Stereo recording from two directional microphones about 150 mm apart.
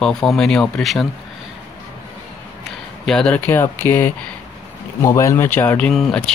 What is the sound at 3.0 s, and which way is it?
Speech, 5° left (ahead or behind).